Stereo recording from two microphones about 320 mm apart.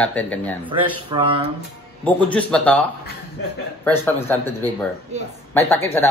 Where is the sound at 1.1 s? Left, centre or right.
Centre.